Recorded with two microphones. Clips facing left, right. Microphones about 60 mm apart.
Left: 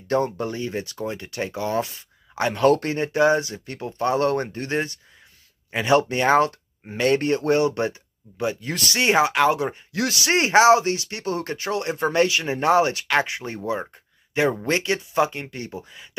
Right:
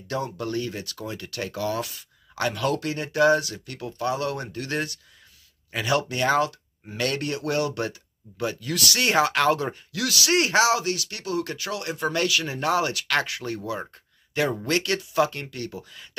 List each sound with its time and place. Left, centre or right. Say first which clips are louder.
0.4 s speech: left 2 dB; left
2.6 s speech: left 7 dB; left; by 9.8 s centre
9.9 s speech: left 1 dB; left